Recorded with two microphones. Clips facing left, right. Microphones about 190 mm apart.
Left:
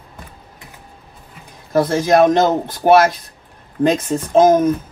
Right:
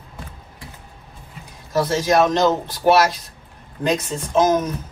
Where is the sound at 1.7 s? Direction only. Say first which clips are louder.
Left 4 dB; 55° left (ahead or behind).